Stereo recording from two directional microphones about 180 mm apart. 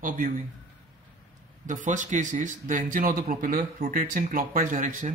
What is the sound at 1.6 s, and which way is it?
Speech, 45° right (ahead or behind).